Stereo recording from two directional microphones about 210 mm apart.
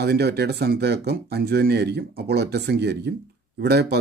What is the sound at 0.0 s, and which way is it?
Speech, 50° right (ahead or behind).